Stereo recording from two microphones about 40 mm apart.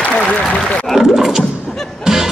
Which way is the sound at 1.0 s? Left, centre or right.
Centre.